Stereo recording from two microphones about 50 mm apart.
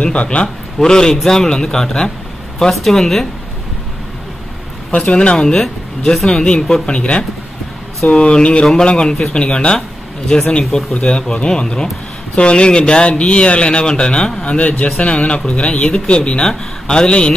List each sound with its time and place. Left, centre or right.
0.0 s a man's voice: left
0.7 s speech: centre
5.0 s a man's voice: centre
9.8 s a sound: centre
10.6 s speech: centre
10.9 s a man's voice: centre